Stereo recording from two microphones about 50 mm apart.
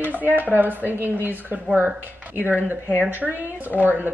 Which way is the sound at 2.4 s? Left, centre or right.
Left.